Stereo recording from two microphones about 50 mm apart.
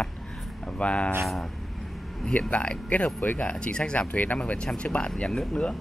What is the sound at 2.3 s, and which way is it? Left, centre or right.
Speech, left.